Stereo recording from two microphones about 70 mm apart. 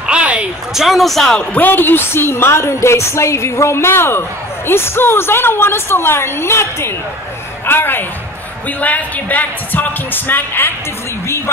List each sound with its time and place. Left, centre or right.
0.0 s a sound: centre
0.7 s a man's voice: centre
1.6 s a woman's voice: left
8.6 s a woman's voice: left